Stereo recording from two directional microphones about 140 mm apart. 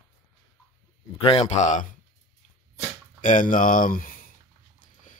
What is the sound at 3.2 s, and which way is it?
Speech, 75° left (ahead or behind).